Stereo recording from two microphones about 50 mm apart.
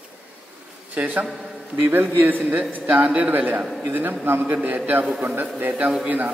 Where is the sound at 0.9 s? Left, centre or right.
Right.